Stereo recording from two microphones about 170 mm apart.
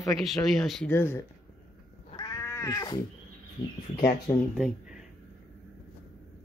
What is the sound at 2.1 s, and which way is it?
Cat, 20° left (ahead or behind).